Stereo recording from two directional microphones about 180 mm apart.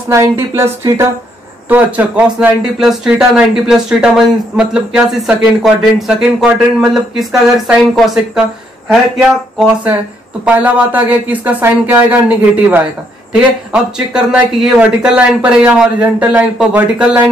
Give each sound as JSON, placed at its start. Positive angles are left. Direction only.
{"t": 0.1, "sound": "speech", "side_deg": -15}
{"t": 10.4, "sound": "speech", "side_deg": -10}